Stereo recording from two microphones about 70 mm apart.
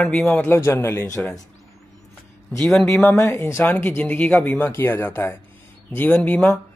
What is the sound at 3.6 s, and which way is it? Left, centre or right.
Speech, left.